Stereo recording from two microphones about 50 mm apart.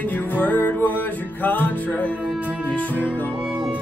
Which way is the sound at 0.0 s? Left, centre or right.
Left.